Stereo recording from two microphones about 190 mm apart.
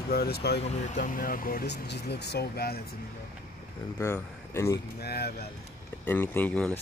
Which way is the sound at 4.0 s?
15° left (ahead or behind).